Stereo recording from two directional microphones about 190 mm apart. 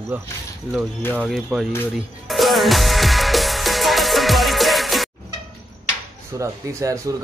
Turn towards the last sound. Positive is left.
turn(degrees=-15)  # may be behind; listen again after turning